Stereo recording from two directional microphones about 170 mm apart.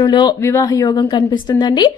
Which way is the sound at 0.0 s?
25° left (ahead or behind).